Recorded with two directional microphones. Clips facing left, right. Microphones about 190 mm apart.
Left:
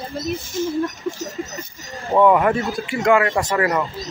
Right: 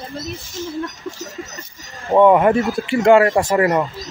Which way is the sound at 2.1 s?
25° right (ahead or behind).